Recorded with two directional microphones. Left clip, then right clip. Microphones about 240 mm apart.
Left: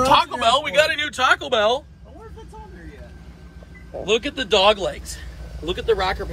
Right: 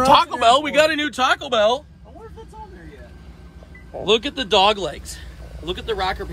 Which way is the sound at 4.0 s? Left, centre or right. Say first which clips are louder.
Right 2 dB; centre.